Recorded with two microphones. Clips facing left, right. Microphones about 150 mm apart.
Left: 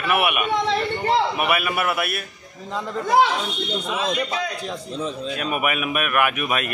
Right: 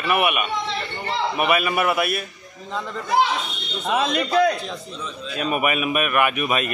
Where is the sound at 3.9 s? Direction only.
60° right (ahead or behind).